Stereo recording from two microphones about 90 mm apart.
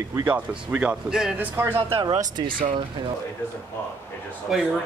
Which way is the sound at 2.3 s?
65° right (ahead or behind).